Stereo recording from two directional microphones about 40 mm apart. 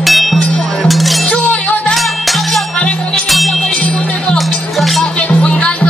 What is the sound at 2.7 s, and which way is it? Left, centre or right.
Music, left.